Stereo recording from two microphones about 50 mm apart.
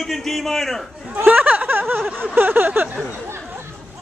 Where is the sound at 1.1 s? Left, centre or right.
Right.